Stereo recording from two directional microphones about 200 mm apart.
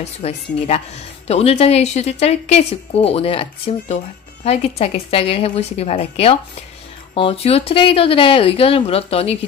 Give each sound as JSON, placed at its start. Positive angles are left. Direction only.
{"t": 0.0, "sound": "a woman's voice", "side_deg": 30}